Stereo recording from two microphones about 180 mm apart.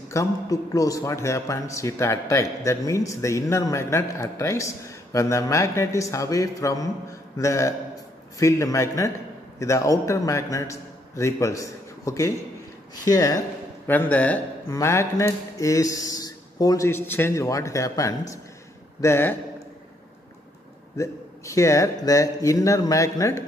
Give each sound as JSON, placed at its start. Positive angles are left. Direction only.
{"t": 0.1, "sound": "a man's voice", "side_deg": 20}
{"t": 21.0, "sound": "speech", "side_deg": 15}